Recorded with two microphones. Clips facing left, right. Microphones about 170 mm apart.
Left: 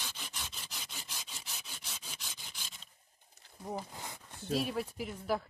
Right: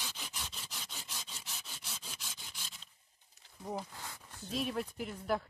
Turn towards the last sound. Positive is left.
turn(degrees=0)  # may be behind; listen again after turning